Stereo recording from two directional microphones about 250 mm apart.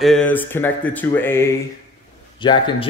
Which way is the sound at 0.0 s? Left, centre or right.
Centre.